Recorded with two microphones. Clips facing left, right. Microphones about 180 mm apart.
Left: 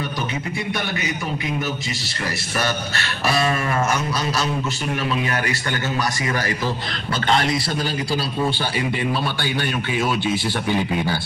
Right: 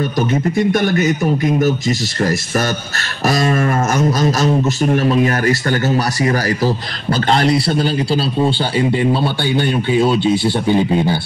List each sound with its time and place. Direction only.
0.3 s a man's voice: 45° right (ahead or behind); by 11.1 s 25° right (ahead or behind)